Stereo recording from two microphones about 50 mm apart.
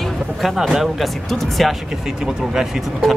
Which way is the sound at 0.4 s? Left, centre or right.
Centre.